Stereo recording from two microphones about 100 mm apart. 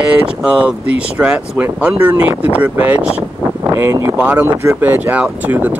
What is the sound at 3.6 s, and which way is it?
Speech, 30° right (ahead or behind).